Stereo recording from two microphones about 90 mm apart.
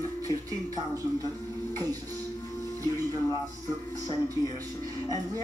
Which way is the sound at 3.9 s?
40° right (ahead or behind).